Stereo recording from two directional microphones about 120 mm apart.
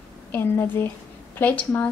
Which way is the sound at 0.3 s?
20° left (ahead or behind).